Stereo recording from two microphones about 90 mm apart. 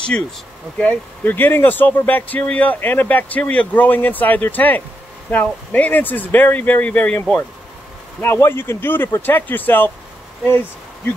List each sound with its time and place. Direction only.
0.7 s speech: 20° left (ahead or behind)